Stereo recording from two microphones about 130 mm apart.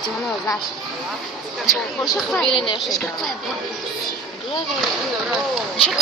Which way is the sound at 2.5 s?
40° left (ahead or behind).